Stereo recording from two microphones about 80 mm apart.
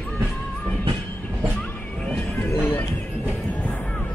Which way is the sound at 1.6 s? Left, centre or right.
Centre.